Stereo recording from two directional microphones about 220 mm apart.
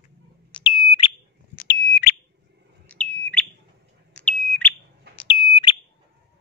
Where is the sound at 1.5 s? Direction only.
45° left (ahead or behind).